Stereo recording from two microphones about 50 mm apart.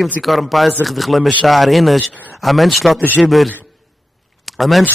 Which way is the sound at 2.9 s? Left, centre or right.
Left.